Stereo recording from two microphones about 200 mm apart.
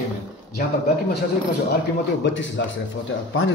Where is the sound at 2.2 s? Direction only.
70° left (ahead or behind).